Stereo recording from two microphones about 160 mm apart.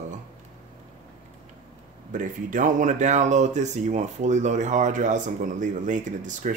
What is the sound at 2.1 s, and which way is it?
Speech, 55° right (ahead or behind).